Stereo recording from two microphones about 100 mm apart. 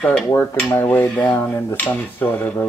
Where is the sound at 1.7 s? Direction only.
20° left (ahead or behind).